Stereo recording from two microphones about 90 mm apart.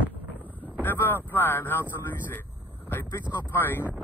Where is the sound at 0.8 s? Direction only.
25° left (ahead or behind).